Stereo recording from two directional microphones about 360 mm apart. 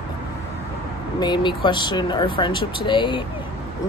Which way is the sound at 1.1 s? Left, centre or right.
Centre.